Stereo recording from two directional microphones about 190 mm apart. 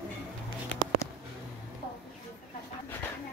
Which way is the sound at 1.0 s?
15° left (ahead or behind).